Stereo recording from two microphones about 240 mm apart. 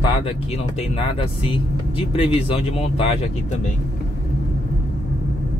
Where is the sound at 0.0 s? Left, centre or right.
Left.